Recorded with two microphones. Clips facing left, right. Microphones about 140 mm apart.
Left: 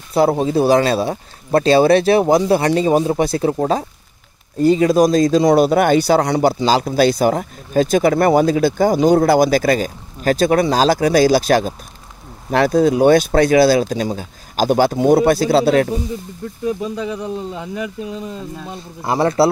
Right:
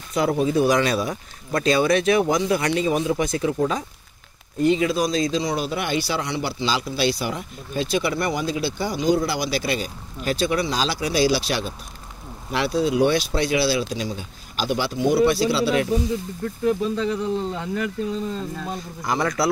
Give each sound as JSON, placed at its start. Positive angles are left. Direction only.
{"t": 0.1, "sound": "speech", "side_deg": 35}
{"t": 16.4, "sound": "speech", "side_deg": 15}
{"t": 19.0, "sound": "a man's voice", "side_deg": 30}